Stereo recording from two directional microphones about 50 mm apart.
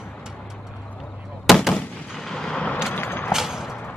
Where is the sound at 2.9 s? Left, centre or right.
Left.